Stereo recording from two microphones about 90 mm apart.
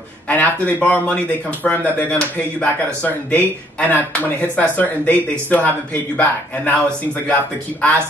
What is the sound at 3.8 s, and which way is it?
Speech, 20° left (ahead or behind).